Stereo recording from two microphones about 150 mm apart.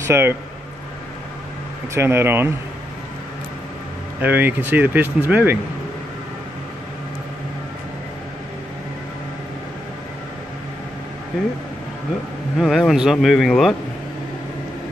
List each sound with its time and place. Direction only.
0.0 s speech: 15° right (ahead or behind)
2.0 s speech: 15° right (ahead or behind)
4.2 s speech: 10° right (ahead or behind)
12.5 s speech: centre (ahead or behind)